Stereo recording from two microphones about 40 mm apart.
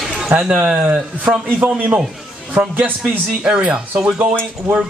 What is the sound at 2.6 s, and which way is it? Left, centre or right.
Speech, right.